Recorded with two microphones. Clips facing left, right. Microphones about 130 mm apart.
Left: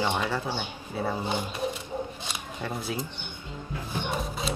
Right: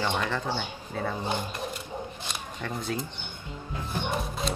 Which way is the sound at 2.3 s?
5° left (ahead or behind).